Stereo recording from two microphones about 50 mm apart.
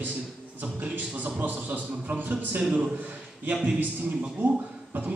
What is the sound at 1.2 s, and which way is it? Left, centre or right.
A man's voice, right.